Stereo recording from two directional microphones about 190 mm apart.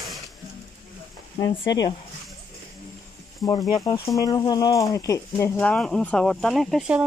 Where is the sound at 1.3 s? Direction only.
20° left (ahead or behind).